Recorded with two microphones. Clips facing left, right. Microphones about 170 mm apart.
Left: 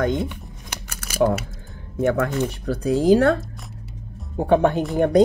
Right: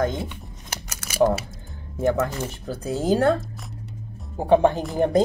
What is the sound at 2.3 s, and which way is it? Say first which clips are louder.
Speech: left 6 dB; centre (ahead or behind).